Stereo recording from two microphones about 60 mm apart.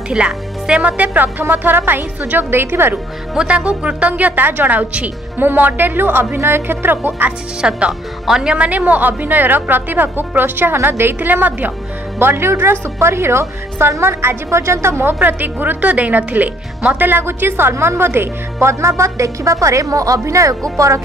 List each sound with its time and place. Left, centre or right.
0.1 s speech: centre; by 3.0 s right
3.3 s speech: centre
4.1 s speech: right
7.6 s speech: centre
8.5 s speech: right
12.2 s a woman's voice: right
15.1 s speech: right